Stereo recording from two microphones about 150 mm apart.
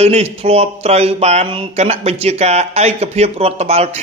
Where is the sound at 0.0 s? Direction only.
45° right (ahead or behind).